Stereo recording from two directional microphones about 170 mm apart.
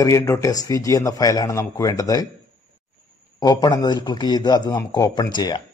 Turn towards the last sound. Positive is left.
turn(degrees=25)  # may be behind; listen again after turning